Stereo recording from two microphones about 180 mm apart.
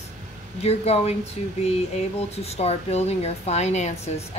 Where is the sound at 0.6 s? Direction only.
35° left (ahead or behind).